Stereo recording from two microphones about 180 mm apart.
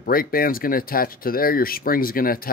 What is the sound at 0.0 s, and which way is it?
Speech, 55° left (ahead or behind).